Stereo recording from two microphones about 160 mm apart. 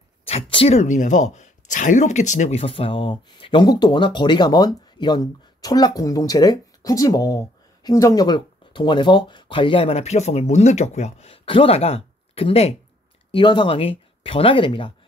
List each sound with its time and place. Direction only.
0.2 s speech: 35° left (ahead or behind)